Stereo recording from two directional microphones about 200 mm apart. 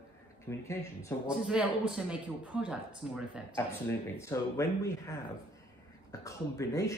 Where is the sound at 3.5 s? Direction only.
10° left (ahead or behind).